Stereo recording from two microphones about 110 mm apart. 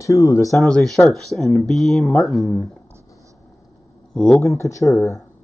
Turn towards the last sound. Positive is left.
turn(degrees=25)  # may be behind; listen again after turning